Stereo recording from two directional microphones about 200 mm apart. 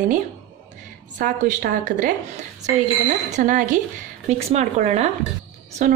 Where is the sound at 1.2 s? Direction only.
40° right (ahead or behind).